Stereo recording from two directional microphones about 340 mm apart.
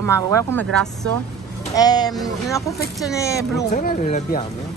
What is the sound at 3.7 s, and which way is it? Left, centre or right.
Speech, left.